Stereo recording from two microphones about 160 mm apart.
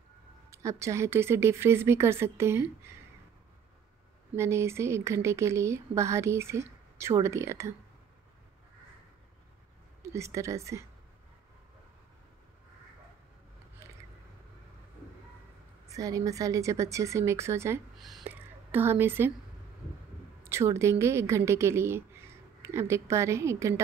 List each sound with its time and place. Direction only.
0.5 s speech: 20° right (ahead or behind)
4.4 s speech: 15° right (ahead or behind)
10.1 s speech: 20° right (ahead or behind)
15.9 s speech: 20° right (ahead or behind)
17.9 s a sound: centre (ahead or behind)
18.2 s whispering: 10° right (ahead or behind)
20.4 s a woman's voice: 15° right (ahead or behind)